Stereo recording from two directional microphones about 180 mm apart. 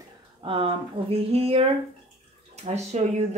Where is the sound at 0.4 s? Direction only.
30° right (ahead or behind).